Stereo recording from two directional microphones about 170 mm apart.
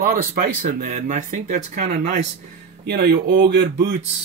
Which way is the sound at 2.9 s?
65° right (ahead or behind).